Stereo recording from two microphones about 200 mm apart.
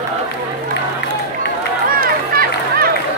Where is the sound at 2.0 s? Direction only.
45° right (ahead or behind).